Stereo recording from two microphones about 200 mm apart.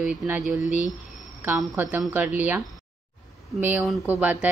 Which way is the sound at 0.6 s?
40° left (ahead or behind).